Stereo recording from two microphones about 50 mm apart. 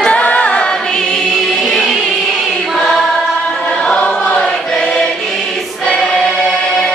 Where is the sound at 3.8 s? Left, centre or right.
Left.